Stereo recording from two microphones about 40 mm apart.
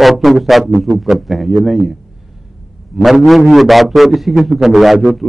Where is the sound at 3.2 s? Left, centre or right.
Centre.